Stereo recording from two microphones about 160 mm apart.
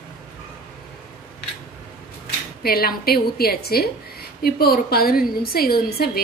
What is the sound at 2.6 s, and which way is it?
A woman's voice, 75° left (ahead or behind).